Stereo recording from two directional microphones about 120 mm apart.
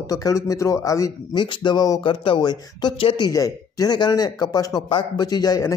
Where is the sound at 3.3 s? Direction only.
30° left (ahead or behind).